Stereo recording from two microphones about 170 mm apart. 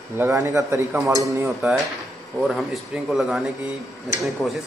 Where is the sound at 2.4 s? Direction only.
Centre (ahead or behind).